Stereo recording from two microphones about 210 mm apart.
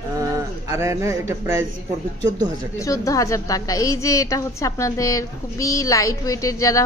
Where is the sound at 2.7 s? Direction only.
15° left (ahead or behind).